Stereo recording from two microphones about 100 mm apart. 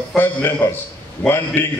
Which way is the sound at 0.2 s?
20° left (ahead or behind).